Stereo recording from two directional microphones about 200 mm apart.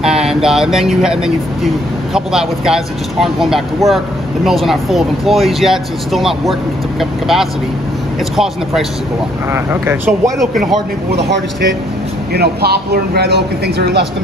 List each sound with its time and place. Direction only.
0.0 s speech: 5° right (ahead or behind)
9.5 s speech: 10° right (ahead or behind)
11.1 s speech: 55° right (ahead or behind)